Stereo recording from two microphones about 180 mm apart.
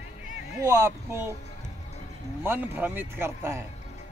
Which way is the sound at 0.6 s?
15° right (ahead or behind).